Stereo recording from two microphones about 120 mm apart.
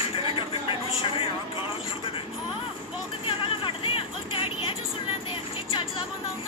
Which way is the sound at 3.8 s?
50° left (ahead or behind).